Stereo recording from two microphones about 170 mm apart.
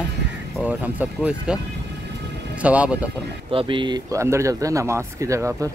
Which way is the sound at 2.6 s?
5° right (ahead or behind).